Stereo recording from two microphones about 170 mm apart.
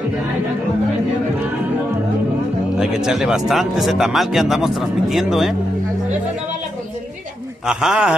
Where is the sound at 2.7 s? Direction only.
5° right (ahead or behind).